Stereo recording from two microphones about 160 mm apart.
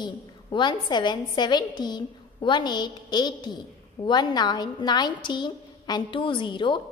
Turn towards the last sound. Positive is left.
turn(degrees=30)  # may be behind; listen again after turning